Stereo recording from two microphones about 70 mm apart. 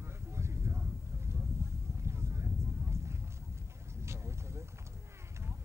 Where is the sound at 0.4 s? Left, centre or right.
Right.